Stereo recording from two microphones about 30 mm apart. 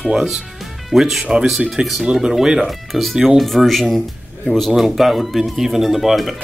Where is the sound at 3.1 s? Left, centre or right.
Centre.